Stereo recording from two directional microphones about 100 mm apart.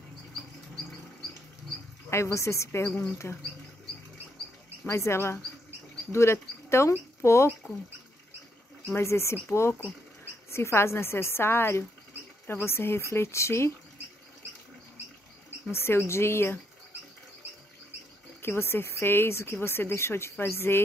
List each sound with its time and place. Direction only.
2.0 s speech: 30° left (ahead or behind)
4.8 s speech: 25° left (ahead or behind)
8.9 s speech: 25° left (ahead or behind)
15.7 s speech: 25° left (ahead or behind)
18.4 s speech: 25° left (ahead or behind)